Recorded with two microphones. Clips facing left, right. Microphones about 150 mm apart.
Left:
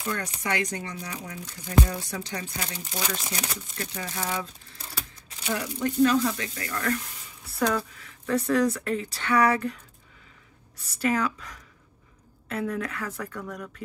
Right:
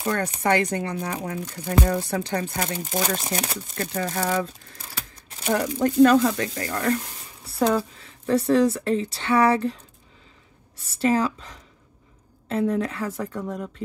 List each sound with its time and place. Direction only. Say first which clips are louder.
0.2 s speech: right 8 dB; 55° right (ahead or behind)
6.5 s speech: right 5 dB; 35° right (ahead or behind)
10.9 s speech: right 4 dB; 30° right (ahead or behind)